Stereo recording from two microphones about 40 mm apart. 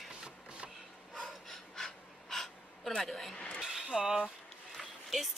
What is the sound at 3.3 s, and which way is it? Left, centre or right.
Speech, left.